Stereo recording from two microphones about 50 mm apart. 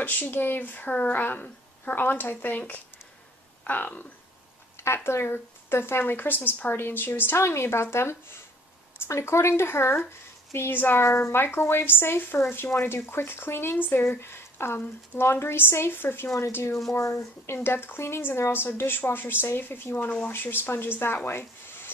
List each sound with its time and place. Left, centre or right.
0.0 s speech: left
3.6 s speech: left
4.8 s speech: left
6.1 s speech: left
7.3 s speech: left
16.9 s speech: left
18.5 s speech: left